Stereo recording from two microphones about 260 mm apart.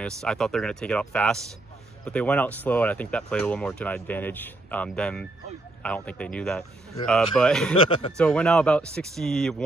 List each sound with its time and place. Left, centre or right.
0.0 s speech: centre
7.8 s a man's voice: centre
8.2 s speech: centre